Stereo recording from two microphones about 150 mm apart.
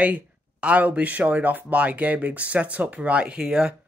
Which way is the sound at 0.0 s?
10° right (ahead or behind).